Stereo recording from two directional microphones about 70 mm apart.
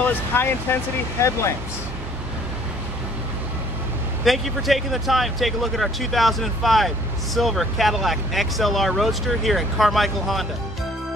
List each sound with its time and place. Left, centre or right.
0.0 s speech: left
4.2 s speech: centre